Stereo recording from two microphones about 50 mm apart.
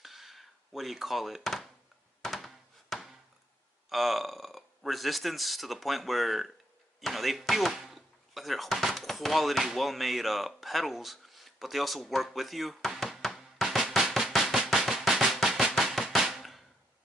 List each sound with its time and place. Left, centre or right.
0.0 s a sound: centre
3.9 s speech: centre
14.1 s drum: centre